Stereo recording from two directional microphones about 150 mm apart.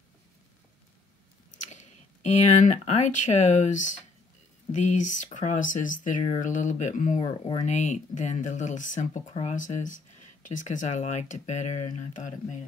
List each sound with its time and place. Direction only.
1.6 s speech: 50° left (ahead or behind)